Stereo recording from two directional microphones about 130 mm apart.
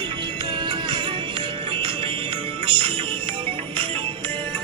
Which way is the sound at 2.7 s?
40° right (ahead or behind).